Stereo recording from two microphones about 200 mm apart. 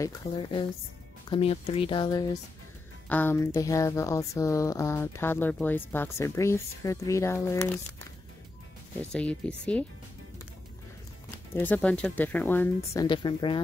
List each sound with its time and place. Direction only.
0.0 s speech: 25° left (ahead or behind)
9.1 s speech: 5° left (ahead or behind)
11.5 s speech: 10° left (ahead or behind)
13.0 s speech: 25° left (ahead or behind)